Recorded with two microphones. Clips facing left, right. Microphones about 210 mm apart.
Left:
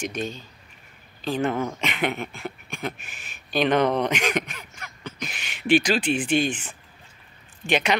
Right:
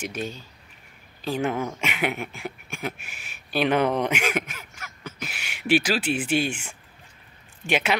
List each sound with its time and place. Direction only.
0.0 s speech: 10° right (ahead or behind)